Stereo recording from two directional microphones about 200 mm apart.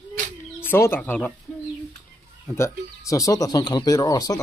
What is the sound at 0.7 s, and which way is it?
Speech, 10° left (ahead or behind).